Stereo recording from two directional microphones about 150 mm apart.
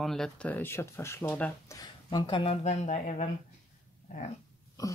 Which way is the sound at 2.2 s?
35° left (ahead or behind).